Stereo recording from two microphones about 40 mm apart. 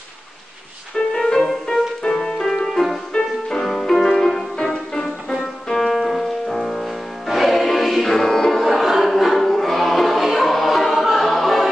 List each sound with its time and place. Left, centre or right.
1.1 s music: centre
3.6 s music: centre
5.8 s music: centre
8.5 s music: centre